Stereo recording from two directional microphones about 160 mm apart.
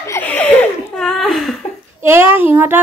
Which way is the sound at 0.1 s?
10° left (ahead or behind).